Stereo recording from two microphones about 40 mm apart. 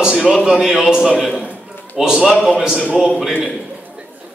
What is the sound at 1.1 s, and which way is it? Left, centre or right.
A man's voice, centre.